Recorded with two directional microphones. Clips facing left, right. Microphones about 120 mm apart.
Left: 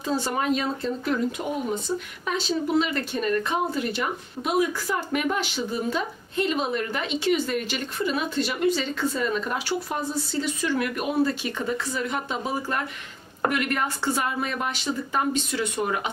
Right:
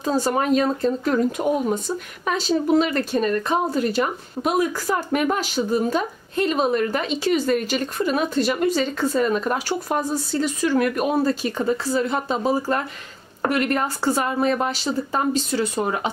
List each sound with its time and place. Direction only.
0.0 s speech: 40° right (ahead or behind)